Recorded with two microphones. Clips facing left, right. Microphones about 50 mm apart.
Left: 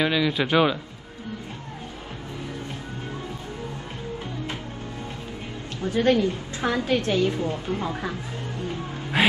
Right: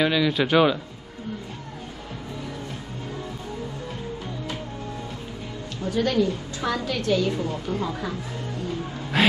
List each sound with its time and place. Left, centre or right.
0.0 s speech: centre
5.9 s a woman's voice: left
9.1 s music: centre